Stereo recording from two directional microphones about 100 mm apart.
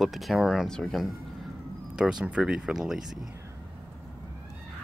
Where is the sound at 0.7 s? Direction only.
5° left (ahead or behind).